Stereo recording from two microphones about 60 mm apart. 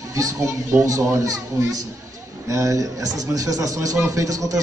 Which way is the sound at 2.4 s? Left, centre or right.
Right.